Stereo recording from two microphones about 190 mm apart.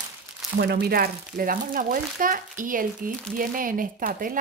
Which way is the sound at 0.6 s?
60° right (ahead or behind).